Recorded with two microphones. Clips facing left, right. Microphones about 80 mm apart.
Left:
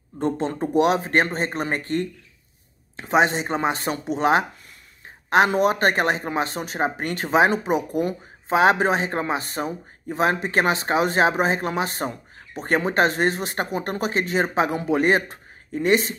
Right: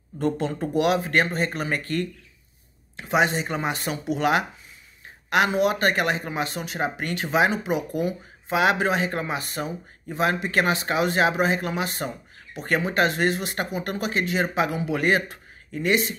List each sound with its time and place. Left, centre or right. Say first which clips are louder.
0.6 s speech: left 4 dB; left
5.6 s speech: left 2 dB; left